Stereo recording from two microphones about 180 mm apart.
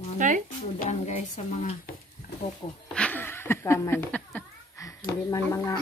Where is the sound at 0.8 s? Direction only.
40° left (ahead or behind).